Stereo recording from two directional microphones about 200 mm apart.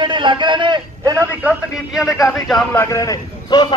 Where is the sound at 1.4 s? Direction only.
5° right (ahead or behind).